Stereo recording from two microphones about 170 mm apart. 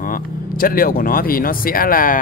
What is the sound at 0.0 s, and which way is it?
Speech, 55° left (ahead or behind).